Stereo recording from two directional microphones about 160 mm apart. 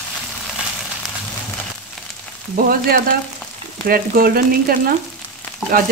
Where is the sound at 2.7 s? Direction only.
65° right (ahead or behind).